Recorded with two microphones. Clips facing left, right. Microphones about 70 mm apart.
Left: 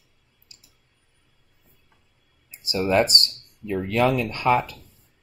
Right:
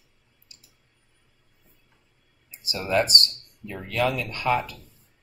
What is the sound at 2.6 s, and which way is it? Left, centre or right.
Speech, left.